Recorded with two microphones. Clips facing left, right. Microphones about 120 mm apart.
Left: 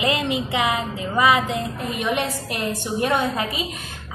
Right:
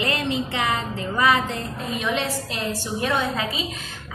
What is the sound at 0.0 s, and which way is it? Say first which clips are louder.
Speech: left 2 dB; 15° left (ahead or behind).